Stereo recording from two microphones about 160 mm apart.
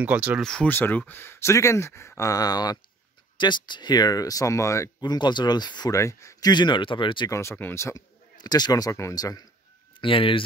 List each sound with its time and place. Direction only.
0.0 s speech: 10° right (ahead or behind)
0.4 s speech: 5° left (ahead or behind); by 7.2 s 30° left (ahead or behind)
7.2 s speech: 15° left (ahead or behind); by 10.4 s 35° left (ahead or behind)